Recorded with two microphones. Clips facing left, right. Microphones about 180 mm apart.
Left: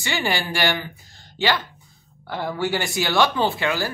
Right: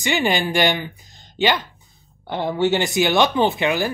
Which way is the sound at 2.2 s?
20° right (ahead or behind).